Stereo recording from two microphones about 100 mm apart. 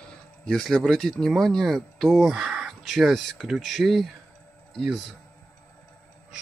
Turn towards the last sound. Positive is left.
turn(degrees=0)  # may be behind; listen again after turning